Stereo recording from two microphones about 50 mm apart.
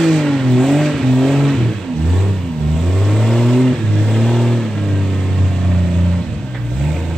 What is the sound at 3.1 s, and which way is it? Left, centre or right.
Vehicle, centre.